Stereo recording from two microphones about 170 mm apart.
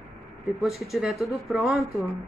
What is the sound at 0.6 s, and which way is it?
A woman's voice, centre (ahead or behind).